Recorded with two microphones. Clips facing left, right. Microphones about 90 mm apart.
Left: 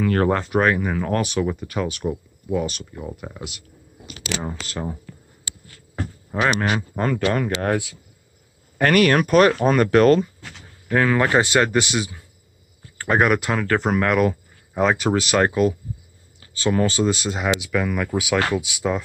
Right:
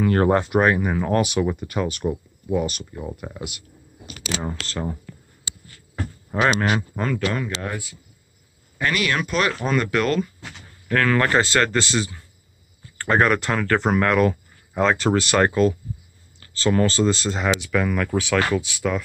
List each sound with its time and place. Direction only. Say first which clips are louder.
0.0 s speech: right 1 dB; 20° right (ahead or behind); by 4.9 s 5° left (ahead or behind)
6.3 s speech: right 1 dB; centre (ahead or behind)
7.3 s speech: left 5 dB; 50° left (ahead or behind)
8.7 s speech: left 7 dB; 50° left (ahead or behind)
10.9 s speech: left 1 dB; 15° left (ahead or behind)